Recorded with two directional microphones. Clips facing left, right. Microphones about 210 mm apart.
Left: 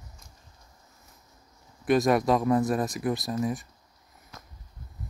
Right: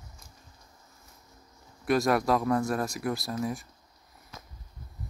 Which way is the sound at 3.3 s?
Centre (ahead or behind).